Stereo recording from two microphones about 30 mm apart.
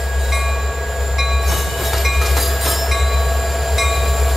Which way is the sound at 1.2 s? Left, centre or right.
Centre.